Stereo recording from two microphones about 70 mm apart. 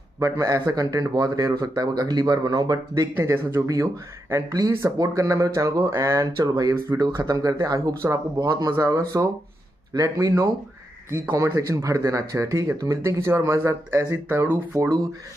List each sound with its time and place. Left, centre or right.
0.2 s speech: right
3.2 s speech: right
6.4 s speech: right
7.0 s speech: right
11.1 s a man's voice: right
14.8 s speech: right